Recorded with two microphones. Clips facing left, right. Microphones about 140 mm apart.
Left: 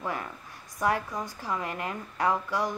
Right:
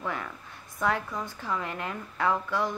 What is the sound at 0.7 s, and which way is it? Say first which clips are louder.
Speech: left 1 dB; 15° left (ahead or behind).